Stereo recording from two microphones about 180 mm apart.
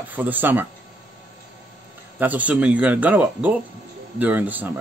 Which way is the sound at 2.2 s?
10° right (ahead or behind).